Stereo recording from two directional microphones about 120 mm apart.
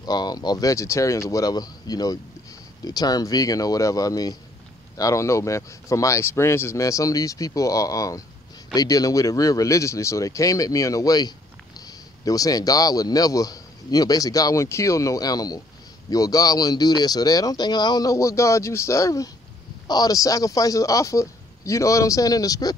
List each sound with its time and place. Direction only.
0.0 s a man's voice: 35° left (ahead or behind)